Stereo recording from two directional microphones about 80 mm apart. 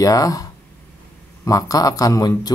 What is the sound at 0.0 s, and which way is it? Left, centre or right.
Speech, left.